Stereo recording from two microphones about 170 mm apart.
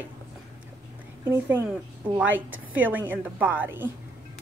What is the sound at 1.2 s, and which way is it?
A woman's voice, 15° right (ahead or behind).